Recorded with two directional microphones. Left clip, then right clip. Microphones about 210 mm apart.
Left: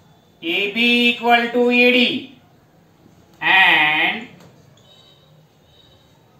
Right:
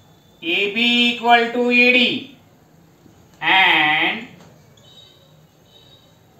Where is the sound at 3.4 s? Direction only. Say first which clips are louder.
Left 1 dB; 20° left (ahead or behind).